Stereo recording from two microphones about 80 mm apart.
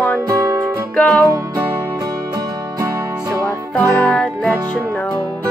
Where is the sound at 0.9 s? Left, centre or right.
Centre.